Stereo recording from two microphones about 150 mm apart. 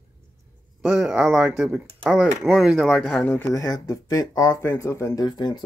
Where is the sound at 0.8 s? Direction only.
5° right (ahead or behind).